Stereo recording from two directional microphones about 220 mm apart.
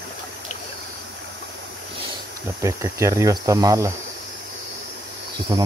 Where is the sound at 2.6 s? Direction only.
15° right (ahead or behind).